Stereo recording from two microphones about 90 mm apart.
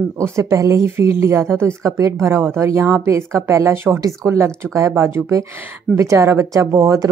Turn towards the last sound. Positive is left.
turn(degrees=-35)  # may be behind; listen again after turning